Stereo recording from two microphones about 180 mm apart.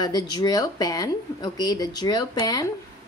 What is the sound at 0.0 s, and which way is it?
A woman's voice, 20° left (ahead or behind).